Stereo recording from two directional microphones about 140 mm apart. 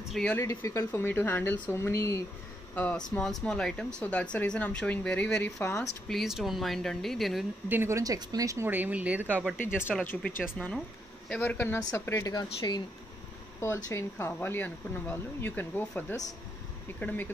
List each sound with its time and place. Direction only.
0.1 s speech: 5° left (ahead or behind)
0.4 s speech: 20° left (ahead or behind)
6.0 s speech: centre (ahead or behind)
7.6 s speech: 15° right (ahead or behind)
9.6 s speech: 15° left (ahead or behind); by 12.8 s 30° left (ahead or behind)
13.8 s speech: 20° left (ahead or behind)